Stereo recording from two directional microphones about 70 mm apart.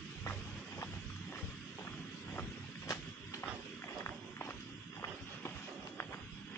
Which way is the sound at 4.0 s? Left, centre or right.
Left.